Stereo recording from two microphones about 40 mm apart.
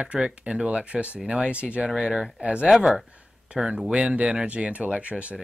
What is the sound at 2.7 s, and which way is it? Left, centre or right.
Speech, centre.